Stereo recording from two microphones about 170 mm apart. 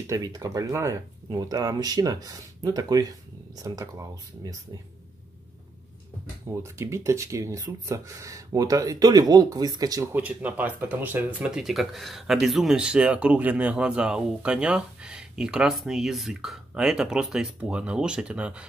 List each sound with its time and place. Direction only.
0.0 s speech: 20° right (ahead or behind)
6.4 s speech: 15° right (ahead or behind)
10.2 s speech: 10° right (ahead or behind)